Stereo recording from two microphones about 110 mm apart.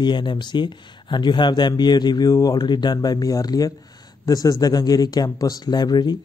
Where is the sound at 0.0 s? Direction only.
45° left (ahead or behind).